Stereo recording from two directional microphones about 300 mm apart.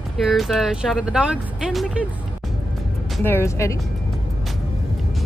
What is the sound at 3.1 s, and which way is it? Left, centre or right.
Speech, centre.